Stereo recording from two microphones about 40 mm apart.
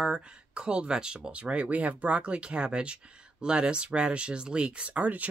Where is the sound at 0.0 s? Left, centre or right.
Right.